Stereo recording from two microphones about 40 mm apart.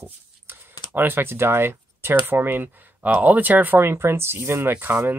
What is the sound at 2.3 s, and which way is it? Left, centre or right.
Speech, right.